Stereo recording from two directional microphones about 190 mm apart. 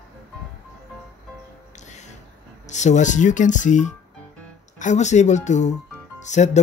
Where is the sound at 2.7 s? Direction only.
40° left (ahead or behind).